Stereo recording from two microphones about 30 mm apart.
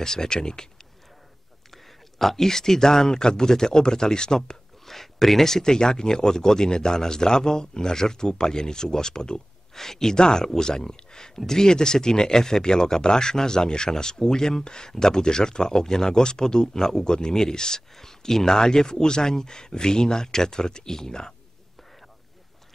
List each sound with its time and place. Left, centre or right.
0.0 s speech: left
2.1 s speech: centre
4.8 s speech: centre